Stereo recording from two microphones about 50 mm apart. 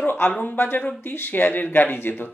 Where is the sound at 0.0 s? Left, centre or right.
Left.